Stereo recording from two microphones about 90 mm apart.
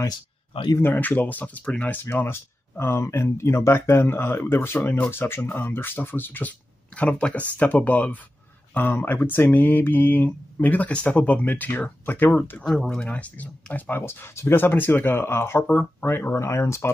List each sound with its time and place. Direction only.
0.7 s speech: 20° left (ahead or behind)
2.0 s speech: 25° left (ahead or behind)
4.7 s speech: 15° left (ahead or behind)
12.6 s speech: 5° left (ahead or behind); by 16.9 s 30° left (ahead or behind)